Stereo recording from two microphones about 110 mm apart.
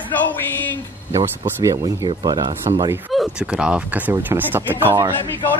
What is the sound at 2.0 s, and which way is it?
Speech, 40° right (ahead or behind).